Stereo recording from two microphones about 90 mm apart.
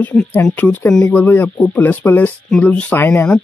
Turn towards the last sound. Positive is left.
turn(degrees=20)  # may be behind; listen again after turning